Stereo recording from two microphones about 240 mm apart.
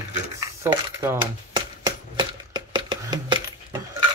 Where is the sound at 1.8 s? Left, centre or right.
Centre.